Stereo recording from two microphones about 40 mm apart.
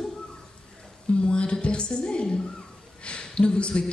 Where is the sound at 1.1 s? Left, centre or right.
Left.